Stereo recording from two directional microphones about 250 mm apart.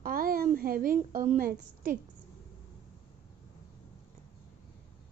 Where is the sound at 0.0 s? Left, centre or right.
Right.